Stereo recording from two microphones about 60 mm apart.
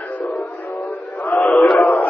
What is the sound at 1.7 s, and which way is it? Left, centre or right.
Speech, left.